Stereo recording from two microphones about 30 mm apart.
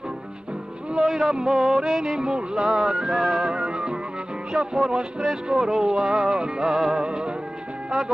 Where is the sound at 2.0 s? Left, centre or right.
Right.